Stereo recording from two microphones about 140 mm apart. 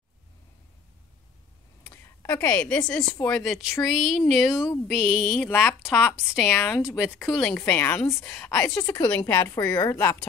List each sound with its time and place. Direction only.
1.9 s a sound: 20° left (ahead or behind)
2.4 s a woman's voice: 10° left (ahead or behind)
6.1 s a woman's voice: centre (ahead or behind)
7.5 s a woman's voice: 10° left (ahead or behind)
8.8 s a woman's voice: 30° left (ahead or behind)